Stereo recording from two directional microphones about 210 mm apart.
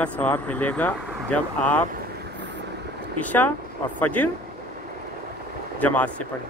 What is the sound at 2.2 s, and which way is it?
Vehicle, 55° right (ahead or behind).